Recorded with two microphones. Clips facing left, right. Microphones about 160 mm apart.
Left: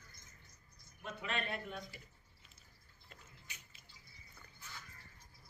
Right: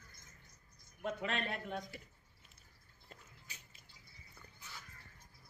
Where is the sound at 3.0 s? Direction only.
35° right (ahead or behind).